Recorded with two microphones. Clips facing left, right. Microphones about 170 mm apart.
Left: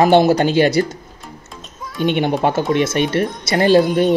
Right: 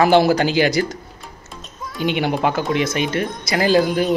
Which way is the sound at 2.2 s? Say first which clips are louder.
Left 3 dB; 25° left (ahead or behind).